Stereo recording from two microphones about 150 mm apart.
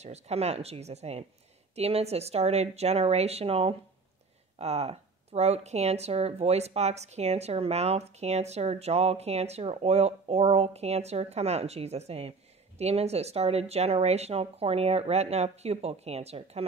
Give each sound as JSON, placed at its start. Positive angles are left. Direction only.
{"t": 0.0, "sound": "a woman's voice", "side_deg": -45}